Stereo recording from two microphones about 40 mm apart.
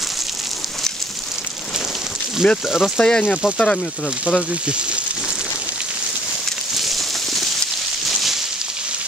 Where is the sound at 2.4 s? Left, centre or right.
Left.